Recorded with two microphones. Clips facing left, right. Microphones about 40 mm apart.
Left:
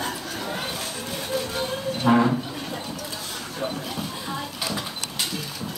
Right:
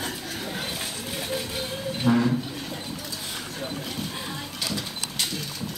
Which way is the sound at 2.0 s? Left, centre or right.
Left.